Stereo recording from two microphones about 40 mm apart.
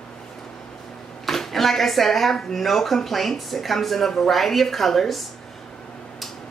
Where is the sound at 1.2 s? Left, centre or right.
Centre.